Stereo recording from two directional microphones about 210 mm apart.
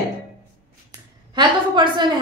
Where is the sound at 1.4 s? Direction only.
20° right (ahead or behind).